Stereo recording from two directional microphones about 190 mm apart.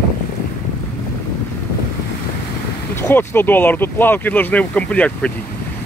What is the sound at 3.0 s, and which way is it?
Speech, 10° left (ahead or behind).